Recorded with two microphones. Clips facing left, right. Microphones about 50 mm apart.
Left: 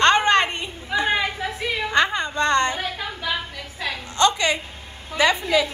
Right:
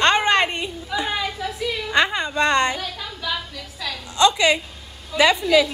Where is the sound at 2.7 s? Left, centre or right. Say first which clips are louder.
Left 2 dB; left.